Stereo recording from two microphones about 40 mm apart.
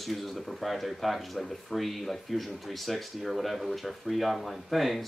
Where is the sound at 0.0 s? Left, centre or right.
Centre.